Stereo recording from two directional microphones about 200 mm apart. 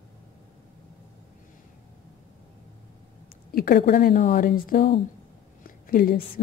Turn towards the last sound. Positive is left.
turn(degrees=45)  # may be behind; listen again after turning